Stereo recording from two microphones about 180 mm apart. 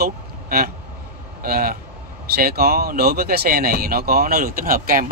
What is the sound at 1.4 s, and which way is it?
Speech, 60° right (ahead or behind).